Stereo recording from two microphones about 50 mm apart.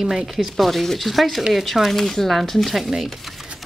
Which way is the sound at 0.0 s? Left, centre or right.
Centre.